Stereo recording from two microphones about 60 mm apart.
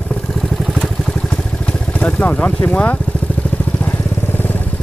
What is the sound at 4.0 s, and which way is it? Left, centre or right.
Vehicle, left.